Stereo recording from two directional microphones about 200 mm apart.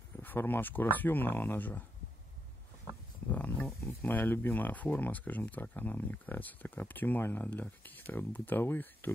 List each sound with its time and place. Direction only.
0.2 s speech: 10° left (ahead or behind)
3.3 s speech: 10° left (ahead or behind)